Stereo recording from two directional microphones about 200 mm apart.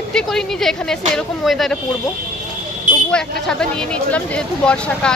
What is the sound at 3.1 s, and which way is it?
Speech, 5° left (ahead or behind).